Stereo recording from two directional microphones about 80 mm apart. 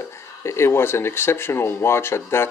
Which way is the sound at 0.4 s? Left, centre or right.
Left.